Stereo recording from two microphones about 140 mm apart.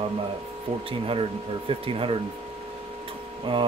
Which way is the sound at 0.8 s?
40° right (ahead or behind).